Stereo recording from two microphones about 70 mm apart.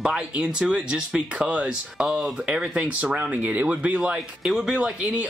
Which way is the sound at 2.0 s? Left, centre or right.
Centre.